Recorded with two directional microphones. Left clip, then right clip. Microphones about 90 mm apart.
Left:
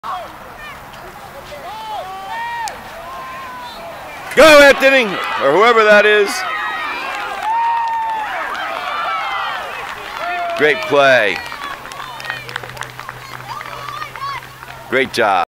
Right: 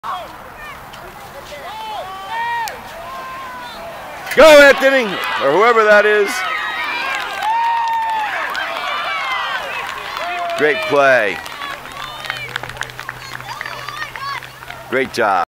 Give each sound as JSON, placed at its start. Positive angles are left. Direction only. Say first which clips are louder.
{"t": 2.0, "sound": "run", "louder": "right 2 dB", "side_deg": -20}
{"t": 4.5, "sound": "speech", "louder": "even", "side_deg": 5}
{"t": 5.2, "sound": "a man's voice", "louder": "left 1 dB", "side_deg": -15}
{"t": 5.5, "sound": "speech", "louder": "left 1 dB", "side_deg": 0}
{"t": 6.4, "sound": "run", "louder": "even", "side_deg": -30}
{"t": 11.0, "sound": "speech", "louder": "left 1 dB", "side_deg": 0}
{"t": 11.6, "sound": "run", "louder": "even", "side_deg": -30}
{"t": 13.5, "sound": "a sound", "louder": "left 1 dB", "side_deg": -30}
{"t": 14.9, "sound": "speech", "louder": "left 2 dB", "side_deg": 0}